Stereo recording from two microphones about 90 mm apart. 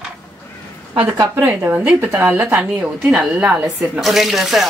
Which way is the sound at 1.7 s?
15° right (ahead or behind).